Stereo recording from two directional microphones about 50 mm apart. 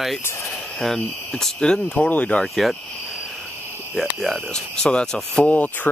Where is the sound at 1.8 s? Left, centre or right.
Left.